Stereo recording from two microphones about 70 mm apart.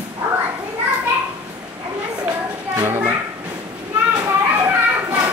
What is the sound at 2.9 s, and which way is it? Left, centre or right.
Speech, right.